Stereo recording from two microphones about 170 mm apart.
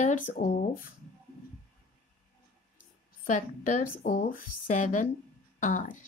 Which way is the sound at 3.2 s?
50° left (ahead or behind).